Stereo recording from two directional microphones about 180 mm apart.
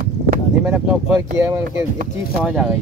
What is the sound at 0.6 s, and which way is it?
Speech, 15° right (ahead or behind).